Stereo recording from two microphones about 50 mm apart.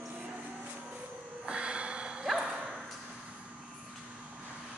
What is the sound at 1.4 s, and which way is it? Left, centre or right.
Snort, right.